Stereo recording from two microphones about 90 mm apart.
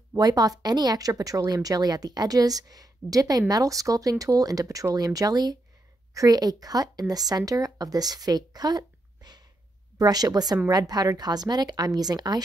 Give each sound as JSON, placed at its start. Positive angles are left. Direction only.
{"t": 0.2, "sound": "speech", "side_deg": -45}